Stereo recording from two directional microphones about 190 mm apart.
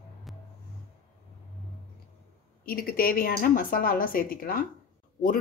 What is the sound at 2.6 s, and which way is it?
A woman's voice, 50° left (ahead or behind).